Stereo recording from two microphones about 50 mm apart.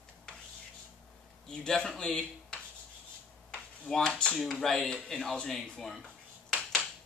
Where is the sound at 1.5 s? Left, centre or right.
Centre.